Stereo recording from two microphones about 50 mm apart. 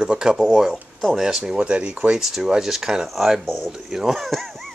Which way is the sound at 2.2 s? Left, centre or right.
Centre.